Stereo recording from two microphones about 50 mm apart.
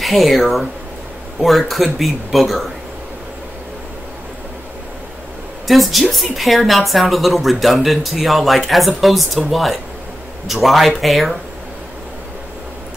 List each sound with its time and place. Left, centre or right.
0.0 s a woman's voice: centre
5.7 s a woman's voice: centre